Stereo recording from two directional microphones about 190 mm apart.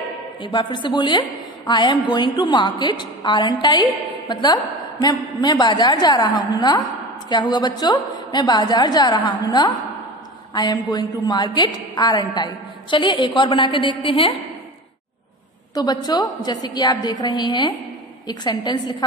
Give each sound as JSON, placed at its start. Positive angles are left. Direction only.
{"t": 0.4, "sound": "a woman's voice", "side_deg": 25}
{"t": 15.7, "sound": "a woman's voice", "side_deg": 20}